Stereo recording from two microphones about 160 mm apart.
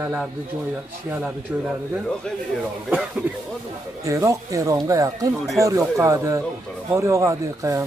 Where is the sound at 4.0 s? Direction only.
20° right (ahead or behind).